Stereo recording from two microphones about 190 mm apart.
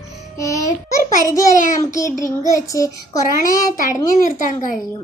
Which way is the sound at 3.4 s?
45° left (ahead or behind).